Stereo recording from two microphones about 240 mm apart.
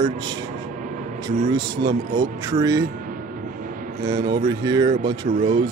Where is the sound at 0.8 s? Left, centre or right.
Right.